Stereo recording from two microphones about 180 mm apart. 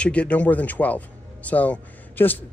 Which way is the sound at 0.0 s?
5° left (ahead or behind).